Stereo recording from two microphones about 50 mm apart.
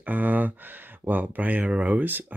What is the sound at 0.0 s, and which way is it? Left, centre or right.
Speech, right.